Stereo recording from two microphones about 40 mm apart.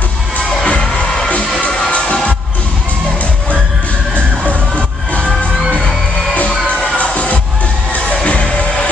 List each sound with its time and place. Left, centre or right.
0.7 s music: left
6.3 s music: left